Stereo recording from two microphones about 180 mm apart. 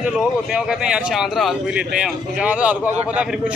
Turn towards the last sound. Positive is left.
turn(degrees=-5)  # may be behind; listen again after turning